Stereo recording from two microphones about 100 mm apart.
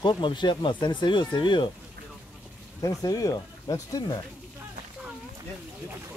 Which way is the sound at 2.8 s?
35° left (ahead or behind).